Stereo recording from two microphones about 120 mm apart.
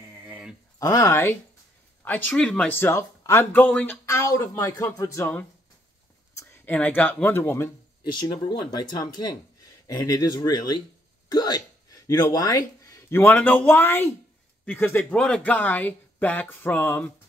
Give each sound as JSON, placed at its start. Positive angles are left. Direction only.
{"t": 0.2, "sound": "a sound", "side_deg": -10}
{"t": 0.7, "sound": "speech", "side_deg": 30}
{"t": 8.0, "sound": "speech", "side_deg": 40}